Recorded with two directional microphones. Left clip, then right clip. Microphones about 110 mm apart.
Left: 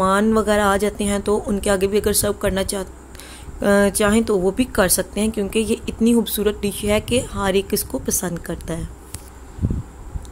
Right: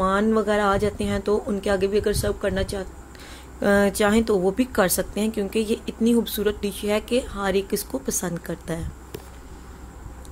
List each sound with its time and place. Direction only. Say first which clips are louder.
0.0 s a woman's voice: left 4 dB; 20° left (ahead or behind)
3.5 s a woman's voice: left 3 dB; 10° left (ahead or behind)